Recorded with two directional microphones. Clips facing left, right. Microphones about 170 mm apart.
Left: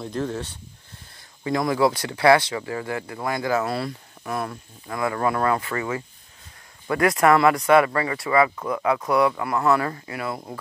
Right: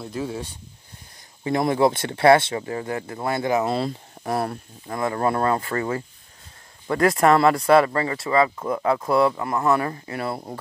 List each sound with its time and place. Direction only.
0.0 s speech: 5° right (ahead or behind)
1.4 s speech: 25° right (ahead or behind)
4.2 s speech: 35° right (ahead or behind)